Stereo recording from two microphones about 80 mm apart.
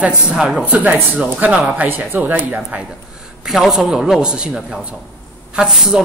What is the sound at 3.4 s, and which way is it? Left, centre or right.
A man's voice, centre.